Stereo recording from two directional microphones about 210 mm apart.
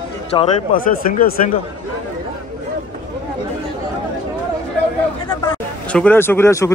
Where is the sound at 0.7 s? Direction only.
40° left (ahead or behind).